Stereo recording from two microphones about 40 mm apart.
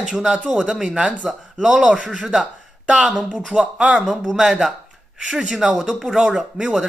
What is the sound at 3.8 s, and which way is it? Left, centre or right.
Speech, right.